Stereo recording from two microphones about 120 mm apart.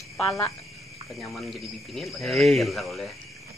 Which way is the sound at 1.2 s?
Centre (ahead or behind).